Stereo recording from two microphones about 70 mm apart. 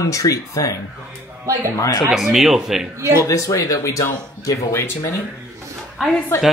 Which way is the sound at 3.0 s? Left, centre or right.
Right.